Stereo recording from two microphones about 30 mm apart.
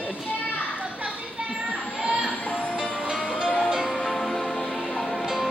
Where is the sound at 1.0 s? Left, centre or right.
Right.